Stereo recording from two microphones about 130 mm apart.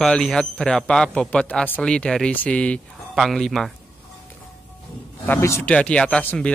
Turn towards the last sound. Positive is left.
turn(degrees=10)  # may be behind; listen again after turning